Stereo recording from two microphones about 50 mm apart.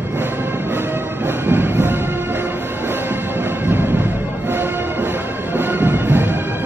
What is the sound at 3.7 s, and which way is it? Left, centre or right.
Music, right.